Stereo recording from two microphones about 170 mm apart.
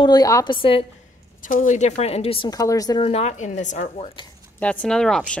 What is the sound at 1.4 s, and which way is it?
Speech, 50° left (ahead or behind).